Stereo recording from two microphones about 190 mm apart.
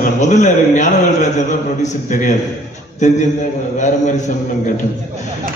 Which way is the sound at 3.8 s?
40° left (ahead or behind).